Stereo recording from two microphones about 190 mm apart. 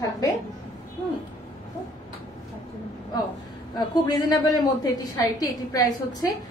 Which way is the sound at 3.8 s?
20° left (ahead or behind).